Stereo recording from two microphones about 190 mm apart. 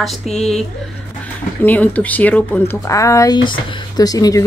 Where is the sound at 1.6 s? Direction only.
10° left (ahead or behind).